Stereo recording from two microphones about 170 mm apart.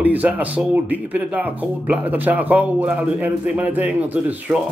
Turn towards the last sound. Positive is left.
turn(degrees=-10)  # may be behind; listen again after turning